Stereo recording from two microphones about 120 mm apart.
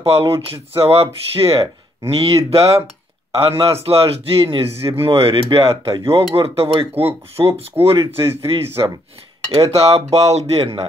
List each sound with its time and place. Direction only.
0.0 s speech: 50° right (ahead or behind)
5.9 s speech: 25° right (ahead or behind)
6.3 s speech: 50° right (ahead or behind)
6.9 s speech: 20° right (ahead or behind)
9.6 s speech: 55° right (ahead or behind)